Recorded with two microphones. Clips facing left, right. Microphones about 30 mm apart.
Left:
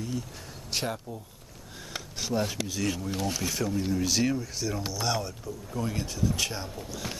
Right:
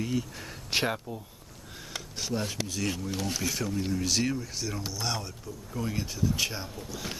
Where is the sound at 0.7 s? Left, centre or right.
Right.